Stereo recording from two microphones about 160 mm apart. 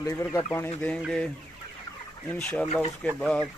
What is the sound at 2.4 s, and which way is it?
Speech, 5° left (ahead or behind).